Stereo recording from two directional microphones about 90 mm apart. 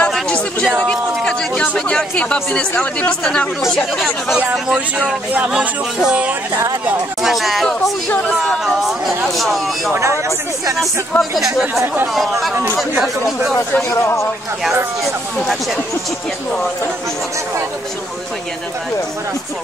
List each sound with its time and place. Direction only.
0.0 s a sound: 15° left (ahead or behind)
2.8 s speech: 10° left (ahead or behind)
4.7 s speech: 15° right (ahead or behind)
8.1 s speech: 10° left (ahead or behind)
9.9 s speech: 35° right (ahead or behind)
10.8 s speech: centre (ahead or behind)
13.8 s speech: 30° left (ahead or behind)